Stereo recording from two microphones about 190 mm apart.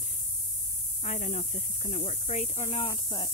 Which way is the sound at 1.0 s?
40° left (ahead or behind).